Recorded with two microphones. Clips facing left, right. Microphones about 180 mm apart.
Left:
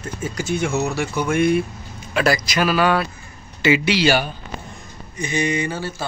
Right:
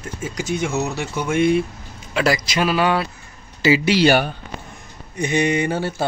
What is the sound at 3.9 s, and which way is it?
Speech, 55° right (ahead or behind).